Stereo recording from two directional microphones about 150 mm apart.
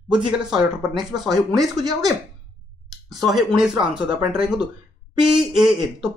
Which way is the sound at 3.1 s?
Centre (ahead or behind).